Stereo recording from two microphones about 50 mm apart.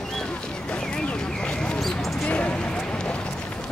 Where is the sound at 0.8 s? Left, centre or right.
Centre.